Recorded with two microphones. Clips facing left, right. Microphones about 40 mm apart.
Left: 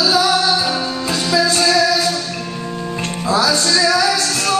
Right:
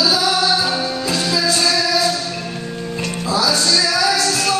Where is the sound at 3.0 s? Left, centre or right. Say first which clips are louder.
Left 2 dB; left.